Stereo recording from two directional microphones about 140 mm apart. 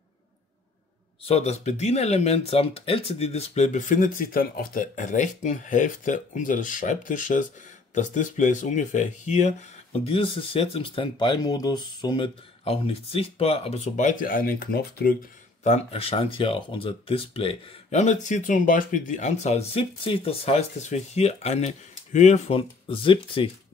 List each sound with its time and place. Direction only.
1.2 s speech: 45° left (ahead or behind)
9.9 s speech: 40° left (ahead or behind)
12.6 s speech: 45° left (ahead or behind); by 15.1 s 90° left
15.6 s speech: 50° left (ahead or behind)
22.6 s speech: 40° left (ahead or behind)